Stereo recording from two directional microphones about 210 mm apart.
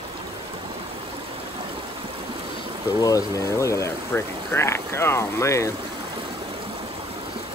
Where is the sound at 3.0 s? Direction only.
15° left (ahead or behind).